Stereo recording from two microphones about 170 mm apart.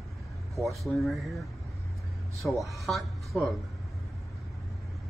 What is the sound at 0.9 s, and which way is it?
Speech, centre (ahead or behind).